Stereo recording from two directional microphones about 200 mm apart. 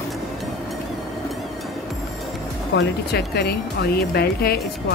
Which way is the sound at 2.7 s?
55° left (ahead or behind).